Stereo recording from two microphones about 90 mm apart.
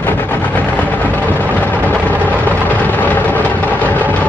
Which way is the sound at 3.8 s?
20° left (ahead or behind).